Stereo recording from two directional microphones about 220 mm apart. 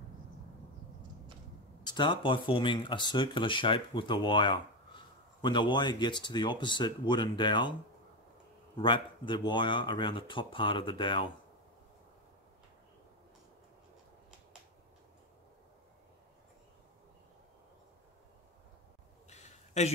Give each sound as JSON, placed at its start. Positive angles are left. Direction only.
{"t": 1.9, "sound": "speech", "side_deg": 20}
{"t": 8.7, "sound": "speech", "side_deg": 20}
{"t": 19.2, "sound": "a sound", "side_deg": 30}